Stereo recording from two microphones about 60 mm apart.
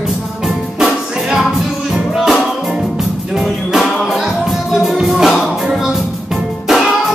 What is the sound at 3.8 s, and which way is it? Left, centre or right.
Music, centre.